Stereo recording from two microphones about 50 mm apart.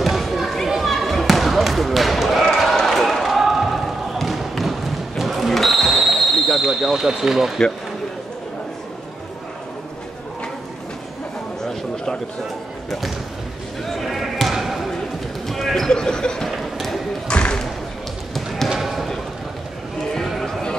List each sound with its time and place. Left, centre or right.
0.0 s basketball bounce: centre
13.8 s basketball bounce: centre
15.9 s a sound: centre
16.4 s basketball bounce: centre
17.3 s basketball bounce: centre
18.3 s basketball bounce: centre